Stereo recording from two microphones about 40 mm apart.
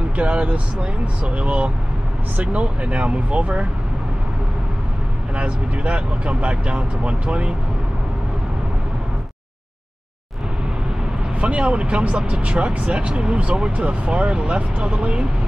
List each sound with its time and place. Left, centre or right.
0.2 s speech: right
5.3 s speech: right
11.4 s speech: right